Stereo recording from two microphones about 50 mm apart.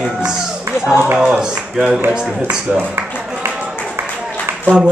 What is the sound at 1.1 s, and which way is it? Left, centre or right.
Speech, centre.